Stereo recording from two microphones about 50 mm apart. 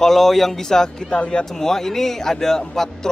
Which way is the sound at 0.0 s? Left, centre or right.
Centre.